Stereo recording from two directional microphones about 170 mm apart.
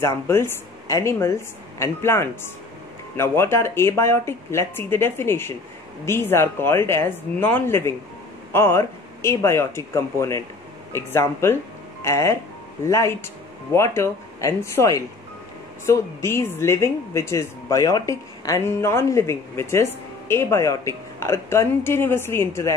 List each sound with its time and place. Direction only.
0.0 s speech: 15° left (ahead or behind)